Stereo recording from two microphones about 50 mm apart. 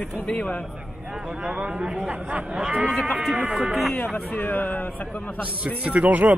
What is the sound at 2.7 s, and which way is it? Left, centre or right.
Speech, right.